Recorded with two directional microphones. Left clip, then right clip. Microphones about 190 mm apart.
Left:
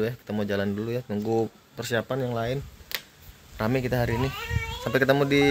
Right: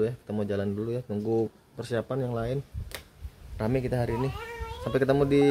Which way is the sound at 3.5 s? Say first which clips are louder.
Left 3 dB; 5° left (ahead or behind).